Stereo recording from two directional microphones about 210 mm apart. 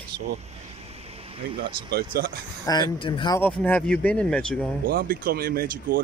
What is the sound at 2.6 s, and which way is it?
Speech, 20° left (ahead or behind).